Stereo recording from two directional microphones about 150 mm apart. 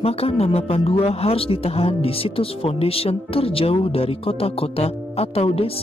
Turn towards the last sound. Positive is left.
turn(degrees=40)  # may be behind; listen again after turning